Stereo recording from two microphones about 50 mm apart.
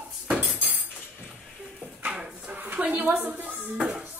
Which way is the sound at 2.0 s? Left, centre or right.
Right.